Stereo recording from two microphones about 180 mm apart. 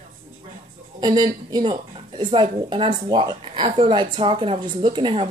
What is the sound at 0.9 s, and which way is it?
A woman's voice, 25° right (ahead or behind).